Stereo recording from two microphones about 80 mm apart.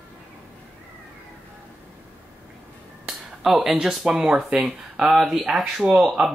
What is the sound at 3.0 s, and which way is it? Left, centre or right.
Speech, centre.